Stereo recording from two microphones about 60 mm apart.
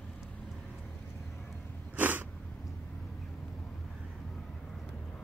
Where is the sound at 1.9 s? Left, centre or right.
Right.